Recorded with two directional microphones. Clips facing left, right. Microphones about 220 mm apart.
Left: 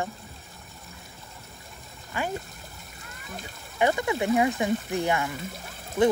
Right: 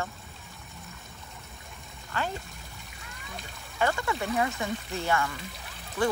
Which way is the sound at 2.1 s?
15° left (ahead or behind).